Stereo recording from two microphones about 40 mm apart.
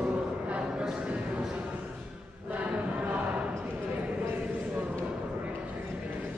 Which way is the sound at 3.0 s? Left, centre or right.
Right.